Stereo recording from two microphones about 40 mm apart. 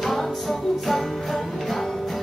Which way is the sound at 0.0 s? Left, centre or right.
Centre.